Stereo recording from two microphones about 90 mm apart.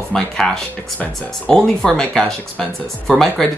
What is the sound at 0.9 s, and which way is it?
Speech, 15° left (ahead or behind).